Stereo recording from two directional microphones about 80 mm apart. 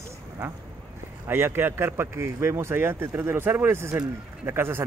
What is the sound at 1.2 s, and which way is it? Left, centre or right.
Speech, right.